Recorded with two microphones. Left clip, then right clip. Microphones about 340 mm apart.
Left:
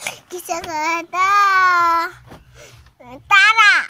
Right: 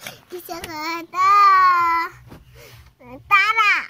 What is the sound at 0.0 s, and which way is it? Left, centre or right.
Child singing, left.